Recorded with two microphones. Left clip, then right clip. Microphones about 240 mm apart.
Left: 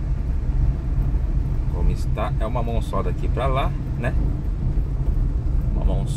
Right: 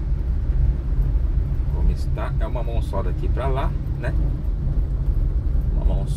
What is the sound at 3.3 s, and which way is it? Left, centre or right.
Speech, centre.